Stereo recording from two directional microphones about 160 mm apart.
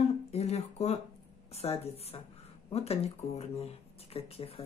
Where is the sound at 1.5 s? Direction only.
40° left (ahead or behind).